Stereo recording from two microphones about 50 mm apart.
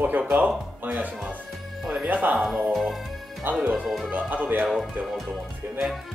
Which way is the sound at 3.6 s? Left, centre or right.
Centre.